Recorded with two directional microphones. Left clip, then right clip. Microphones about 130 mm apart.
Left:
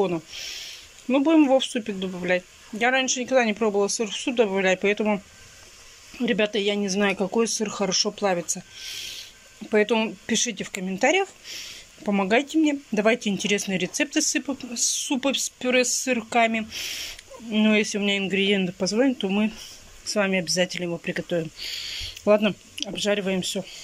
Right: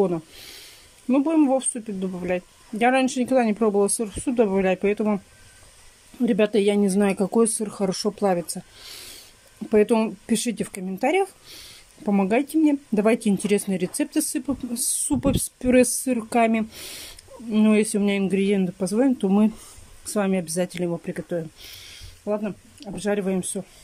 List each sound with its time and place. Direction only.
1.0 s speech: 20° right (ahead or behind)
3.1 s speech: 30° right (ahead or behind)
4.1 s speech: 35° right (ahead or behind)
4.4 s speech: 20° right (ahead or behind)
7.9 s speech: 35° right (ahead or behind)
9.7 s speech: 25° right (ahead or behind); by 15.9 s 40° right (ahead or behind)
16.1 s speech: 30° right (ahead or behind)
16.7 s speech: 35° right (ahead or behind)
17.5 s speech: 25° right (ahead or behind)
19.1 s speech: 30° right (ahead or behind)
22.3 s speech: 5° left (ahead or behind)
22.9 s speech: 10° right (ahead or behind)